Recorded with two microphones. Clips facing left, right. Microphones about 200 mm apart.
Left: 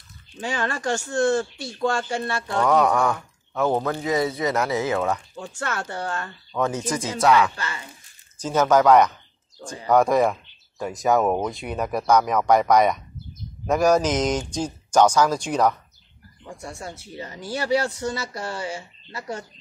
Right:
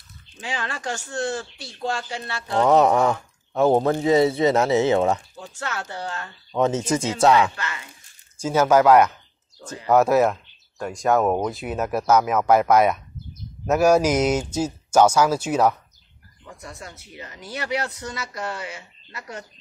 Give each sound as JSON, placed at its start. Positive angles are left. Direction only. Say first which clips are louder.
{"t": 0.4, "sound": "speech", "louder": "left 4 dB", "side_deg": 45}
{"t": 2.5, "sound": "speech", "louder": "right 3 dB", "side_deg": -25}
{"t": 5.6, "sound": "speech", "louder": "left 2 dB", "side_deg": 50}
{"t": 6.5, "sound": "speech", "louder": "right 4 dB", "side_deg": -25}
{"t": 7.5, "sound": "speech", "louder": "even", "side_deg": 30}
{"t": 8.4, "sound": "speech", "louder": "right 1 dB", "side_deg": -10}
{"t": 16.4, "sound": "speech", "louder": "left 4 dB", "side_deg": 30}